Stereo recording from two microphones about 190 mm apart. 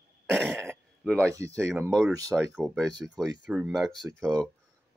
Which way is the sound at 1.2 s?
15° right (ahead or behind).